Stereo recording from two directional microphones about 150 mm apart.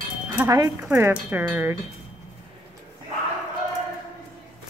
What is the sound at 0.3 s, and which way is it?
Speech, 20° right (ahead or behind).